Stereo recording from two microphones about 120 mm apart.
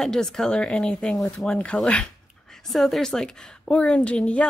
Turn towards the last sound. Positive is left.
turn(degrees=10)  # may be behind; listen again after turning